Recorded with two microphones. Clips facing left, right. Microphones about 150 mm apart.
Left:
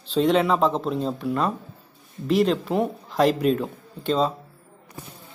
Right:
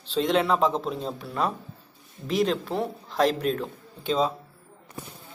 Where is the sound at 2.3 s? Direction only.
Centre (ahead or behind).